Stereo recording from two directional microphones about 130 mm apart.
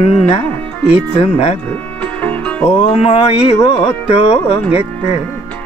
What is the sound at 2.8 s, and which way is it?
Music, 50° left (ahead or behind).